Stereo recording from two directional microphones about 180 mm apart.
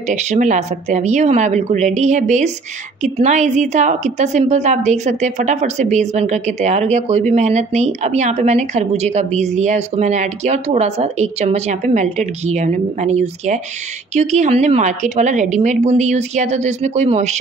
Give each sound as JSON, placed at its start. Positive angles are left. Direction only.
{"t": 0.1, "sound": "a woman's voice", "side_deg": -40}